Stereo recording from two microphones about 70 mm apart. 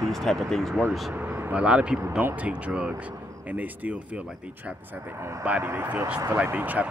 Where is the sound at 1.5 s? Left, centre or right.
Centre.